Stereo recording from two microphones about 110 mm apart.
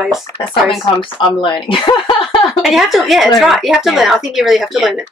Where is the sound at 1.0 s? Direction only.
50° left (ahead or behind).